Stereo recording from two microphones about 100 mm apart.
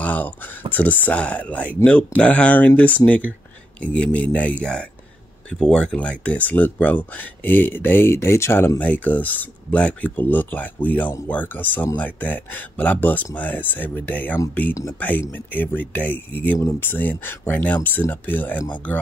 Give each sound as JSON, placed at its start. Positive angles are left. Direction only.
{"t": 0.0, "sound": "speech", "side_deg": 15}